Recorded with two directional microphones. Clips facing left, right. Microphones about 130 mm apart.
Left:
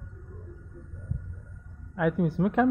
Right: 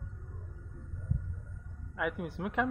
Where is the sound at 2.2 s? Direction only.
30° left (ahead or behind).